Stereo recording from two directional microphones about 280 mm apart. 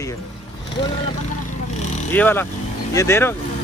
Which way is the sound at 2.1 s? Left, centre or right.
Centre.